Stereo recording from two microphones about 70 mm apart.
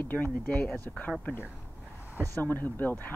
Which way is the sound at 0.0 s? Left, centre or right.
Left.